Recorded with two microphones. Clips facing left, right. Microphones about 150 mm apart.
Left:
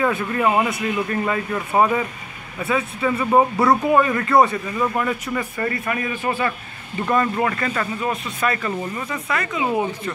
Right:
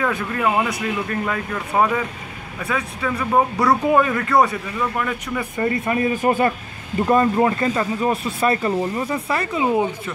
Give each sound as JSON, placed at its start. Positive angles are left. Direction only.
{"t": 0.0, "sound": "speech", "side_deg": 5}
{"t": 5.4, "sound": "speech", "side_deg": -20}
{"t": 6.0, "sound": "speech", "side_deg": -40}
{"t": 7.0, "sound": "speech", "side_deg": -30}
{"t": 9.7, "sound": "speech", "side_deg": -15}